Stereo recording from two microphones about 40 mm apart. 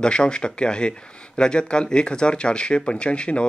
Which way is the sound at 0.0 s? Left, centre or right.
Left.